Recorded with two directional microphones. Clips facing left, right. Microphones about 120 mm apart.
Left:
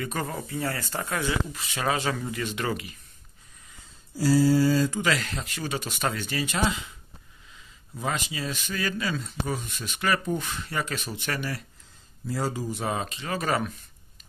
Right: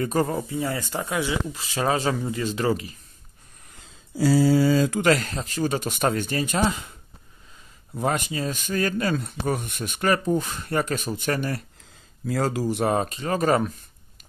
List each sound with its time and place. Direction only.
0.0 s speech: 35° right (ahead or behind)
0.4 s speech: 15° right (ahead or behind)
1.5 s speech: 30° right (ahead or behind)
4.7 s speech: 90° right
5.0 s speech: 45° right (ahead or behind)
7.9 s speech: 50° right (ahead or behind)
12.3 s speech: 90° right; by 12.9 s 70° right (ahead or behind)
12.9 s speech: 45° right (ahead or behind)